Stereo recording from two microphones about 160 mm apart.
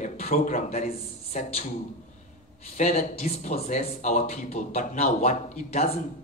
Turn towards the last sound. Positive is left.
turn(degrees=40)  # may be behind; listen again after turning